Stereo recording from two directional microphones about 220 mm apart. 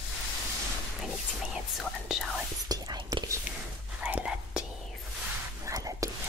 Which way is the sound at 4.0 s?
5° right (ahead or behind).